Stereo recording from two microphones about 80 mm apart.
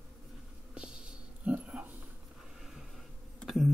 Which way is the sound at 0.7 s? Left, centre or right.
Centre.